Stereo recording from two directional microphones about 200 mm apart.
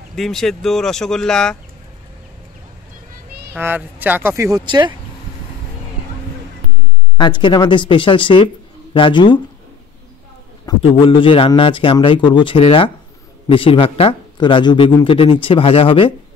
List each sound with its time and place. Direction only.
0.1 s speech: centre (ahead or behind)
3.5 s speech: 10° right (ahead or behind)
7.2 s speech: 25° left (ahead or behind)
10.6 s speech: 20° left (ahead or behind)